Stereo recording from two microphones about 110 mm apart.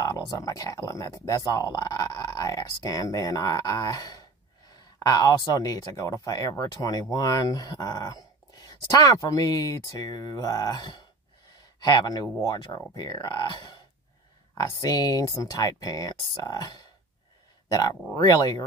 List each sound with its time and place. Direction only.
0.0 s speech: 35° left (ahead or behind)